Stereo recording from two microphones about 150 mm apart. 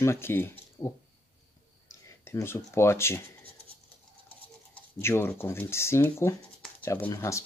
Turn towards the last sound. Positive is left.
turn(degrees=20)  # may be behind; listen again after turning